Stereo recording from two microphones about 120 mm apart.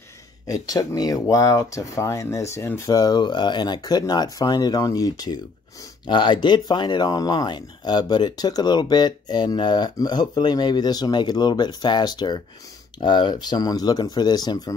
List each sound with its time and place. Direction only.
0.5 s speech: 30° left (ahead or behind)